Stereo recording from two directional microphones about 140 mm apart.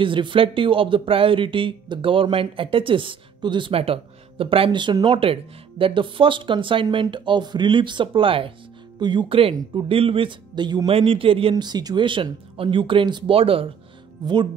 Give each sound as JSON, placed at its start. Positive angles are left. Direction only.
{"t": 0.0, "sound": "speech", "side_deg": -35}